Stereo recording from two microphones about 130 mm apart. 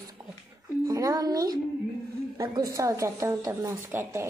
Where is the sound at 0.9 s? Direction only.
30° right (ahead or behind).